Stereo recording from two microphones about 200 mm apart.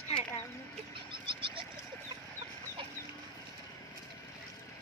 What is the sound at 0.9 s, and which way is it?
Neigh, 25° right (ahead or behind).